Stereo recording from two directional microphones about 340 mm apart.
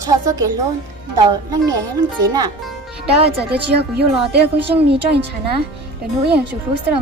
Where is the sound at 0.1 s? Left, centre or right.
Centre.